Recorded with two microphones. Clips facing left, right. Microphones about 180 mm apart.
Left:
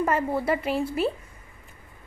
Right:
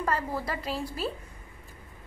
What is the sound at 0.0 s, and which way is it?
Speech, 20° left (ahead or behind).